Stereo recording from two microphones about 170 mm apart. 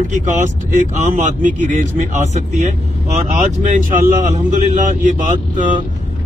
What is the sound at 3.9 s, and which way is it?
Speech, 50° right (ahead or behind).